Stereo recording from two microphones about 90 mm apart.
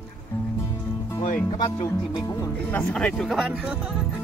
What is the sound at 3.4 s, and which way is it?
Speech, 10° right (ahead or behind).